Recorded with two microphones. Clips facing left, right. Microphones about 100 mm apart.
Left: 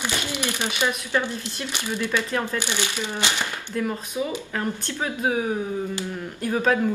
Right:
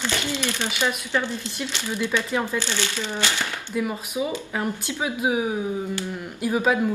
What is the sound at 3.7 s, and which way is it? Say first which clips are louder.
Speech: even; 10° right (ahead or behind).